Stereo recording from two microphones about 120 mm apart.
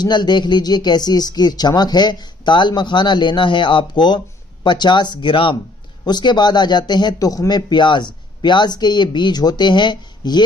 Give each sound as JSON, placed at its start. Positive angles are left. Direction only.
{"t": 0.0, "sound": "speech", "side_deg": 40}